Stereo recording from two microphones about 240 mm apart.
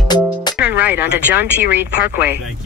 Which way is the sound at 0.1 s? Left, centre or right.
Centre.